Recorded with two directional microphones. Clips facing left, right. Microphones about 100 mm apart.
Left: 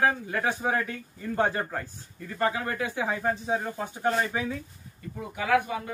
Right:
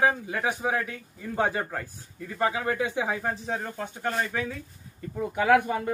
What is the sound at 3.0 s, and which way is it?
Speech, 5° left (ahead or behind).